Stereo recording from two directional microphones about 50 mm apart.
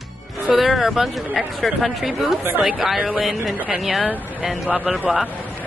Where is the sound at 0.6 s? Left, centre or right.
Centre.